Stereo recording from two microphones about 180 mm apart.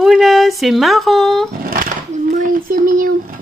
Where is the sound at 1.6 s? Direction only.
50° right (ahead or behind).